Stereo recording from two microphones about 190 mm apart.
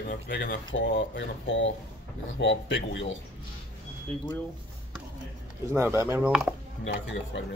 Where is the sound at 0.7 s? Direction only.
70° left (ahead or behind).